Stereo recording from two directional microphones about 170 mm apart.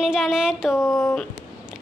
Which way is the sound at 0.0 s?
5° right (ahead or behind).